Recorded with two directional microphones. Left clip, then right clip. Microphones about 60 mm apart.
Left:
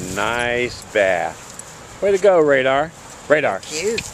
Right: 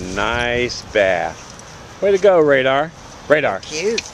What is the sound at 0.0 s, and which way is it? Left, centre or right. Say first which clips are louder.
Keys jangling: right 1 dB; centre.